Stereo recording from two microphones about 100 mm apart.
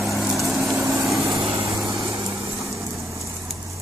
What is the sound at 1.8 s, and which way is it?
Light engine, 30° right (ahead or behind).